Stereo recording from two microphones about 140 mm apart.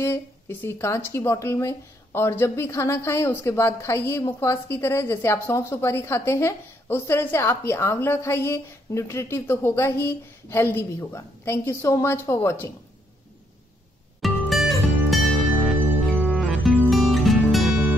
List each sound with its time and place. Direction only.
0.0 s speech: 15° left (ahead or behind)
14.2 s music: centre (ahead or behind)
16.4 s music: 10° right (ahead or behind)